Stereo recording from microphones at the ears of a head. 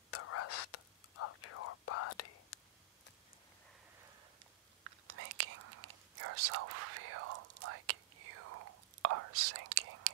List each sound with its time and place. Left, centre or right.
0.1 s whispering: left
4.8 s whispering: right